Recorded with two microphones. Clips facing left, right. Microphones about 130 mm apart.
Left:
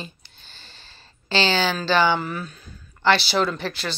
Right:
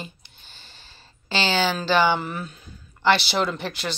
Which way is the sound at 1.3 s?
15° right (ahead or behind).